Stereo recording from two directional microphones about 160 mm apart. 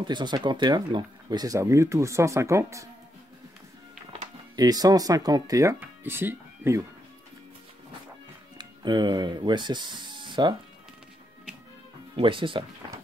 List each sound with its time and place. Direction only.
0.0 s speech: 30° right (ahead or behind)
4.1 s speech: 25° right (ahead or behind)
8.5 s speech: 25° right (ahead or behind)
12.2 s speech: 30° right (ahead or behind)